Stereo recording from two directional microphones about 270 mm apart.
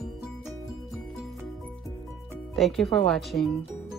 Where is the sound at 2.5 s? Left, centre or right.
Centre.